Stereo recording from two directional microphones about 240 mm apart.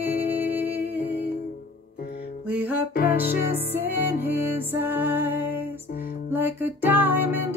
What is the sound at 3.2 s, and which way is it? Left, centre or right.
Music, left.